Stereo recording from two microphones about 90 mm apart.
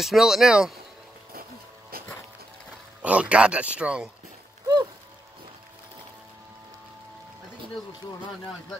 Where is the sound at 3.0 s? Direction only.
15° right (ahead or behind).